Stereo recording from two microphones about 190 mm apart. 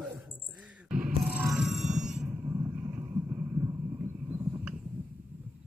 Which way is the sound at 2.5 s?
15° right (ahead or behind).